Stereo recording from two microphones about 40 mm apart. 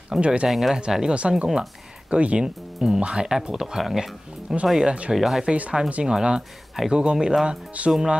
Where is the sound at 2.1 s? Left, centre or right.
Right.